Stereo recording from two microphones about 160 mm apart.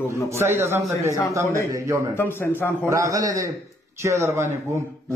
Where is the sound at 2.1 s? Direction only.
15° left (ahead or behind).